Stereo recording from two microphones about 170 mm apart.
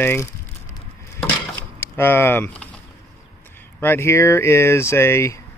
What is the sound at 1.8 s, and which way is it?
Speech, 15° left (ahead or behind).